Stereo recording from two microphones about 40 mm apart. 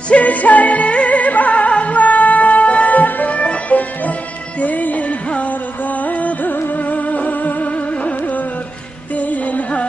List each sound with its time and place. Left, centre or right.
0.1 s music: left